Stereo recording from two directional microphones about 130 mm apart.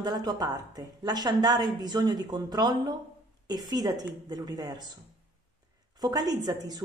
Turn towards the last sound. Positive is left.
turn(degrees=-30)  # may be behind; listen again after turning